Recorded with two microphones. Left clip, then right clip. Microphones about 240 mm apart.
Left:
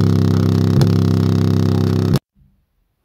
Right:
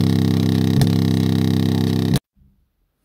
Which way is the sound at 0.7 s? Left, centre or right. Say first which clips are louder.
Left 2 dB; centre.